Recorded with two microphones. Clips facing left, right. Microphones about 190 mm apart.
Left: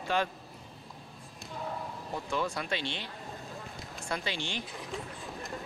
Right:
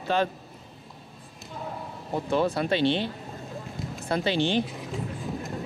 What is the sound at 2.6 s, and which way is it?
Speech, 30° right (ahead or behind).